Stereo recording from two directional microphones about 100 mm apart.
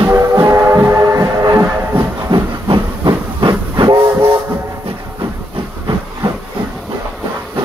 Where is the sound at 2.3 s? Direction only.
50° right (ahead or behind).